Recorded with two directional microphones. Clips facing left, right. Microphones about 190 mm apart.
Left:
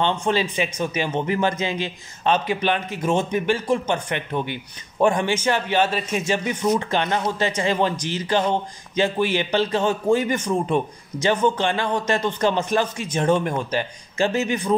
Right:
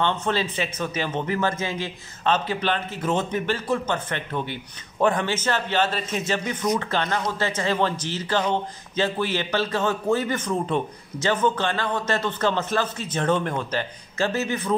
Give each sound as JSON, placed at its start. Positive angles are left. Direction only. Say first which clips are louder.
{"t": 0.0, "sound": "speech", "louder": "left 3 dB", "side_deg": 15}